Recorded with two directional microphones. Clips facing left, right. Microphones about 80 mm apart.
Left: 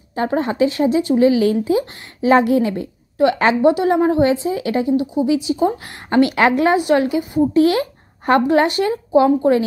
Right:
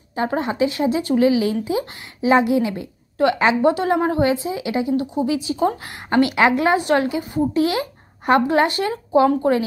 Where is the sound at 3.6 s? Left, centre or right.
Right; by 4.9 s centre.